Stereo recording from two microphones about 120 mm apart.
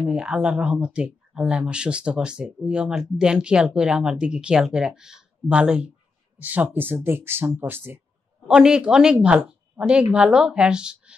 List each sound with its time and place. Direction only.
0.0 s speech: 5° right (ahead or behind)
8.5 s speech: 5° right (ahead or behind)